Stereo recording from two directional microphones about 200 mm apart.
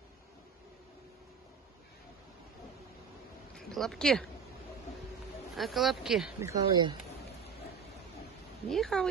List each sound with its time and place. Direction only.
3.5 s speech: centre (ahead or behind)
5.6 s speech: centre (ahead or behind)
6.4 s speech: 20° right (ahead or behind)
8.6 s speech: centre (ahead or behind)